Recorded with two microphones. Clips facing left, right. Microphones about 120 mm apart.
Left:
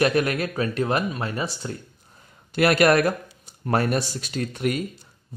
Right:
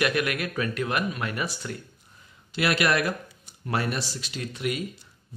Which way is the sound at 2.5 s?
45° left (ahead or behind).